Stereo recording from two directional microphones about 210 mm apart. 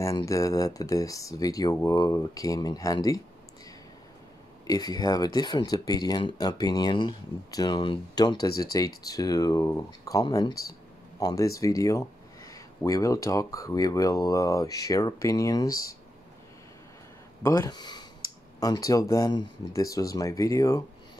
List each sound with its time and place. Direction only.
0.0 s speech: 15° left (ahead or behind)
4.6 s speech: 20° left (ahead or behind)
17.4 s speech: 15° left (ahead or behind)